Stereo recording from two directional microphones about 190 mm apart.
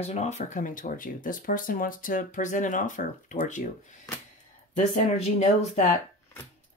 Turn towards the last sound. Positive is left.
turn(degrees=35)  # may be behind; listen again after turning